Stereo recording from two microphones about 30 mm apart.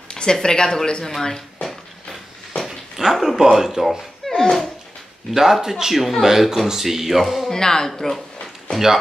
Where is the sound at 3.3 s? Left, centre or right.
Centre.